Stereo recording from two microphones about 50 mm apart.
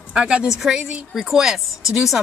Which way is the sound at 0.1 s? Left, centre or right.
Centre.